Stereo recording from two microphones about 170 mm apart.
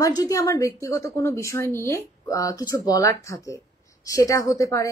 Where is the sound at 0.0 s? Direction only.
20° left (ahead or behind).